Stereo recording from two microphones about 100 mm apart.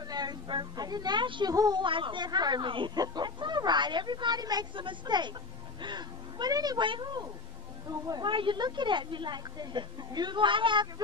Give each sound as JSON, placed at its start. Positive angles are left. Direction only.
{"t": 0.1, "sound": "a woman's voice", "side_deg": -45}
{"t": 1.5, "sound": "speech", "side_deg": -40}
{"t": 1.9, "sound": "a woman's voice", "side_deg": -55}
{"t": 6.8, "sound": "a woman's voice", "side_deg": -55}
{"t": 8.3, "sound": "a woman's voice", "side_deg": -55}